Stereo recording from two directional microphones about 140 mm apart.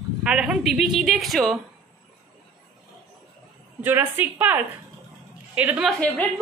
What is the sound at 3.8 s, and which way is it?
Female singing, 15° right (ahead or behind).